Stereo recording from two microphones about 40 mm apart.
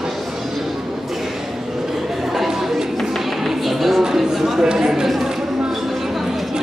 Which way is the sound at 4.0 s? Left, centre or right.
Centre.